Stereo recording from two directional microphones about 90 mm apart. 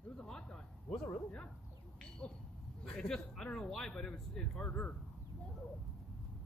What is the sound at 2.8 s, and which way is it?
Speech, 5° left (ahead or behind).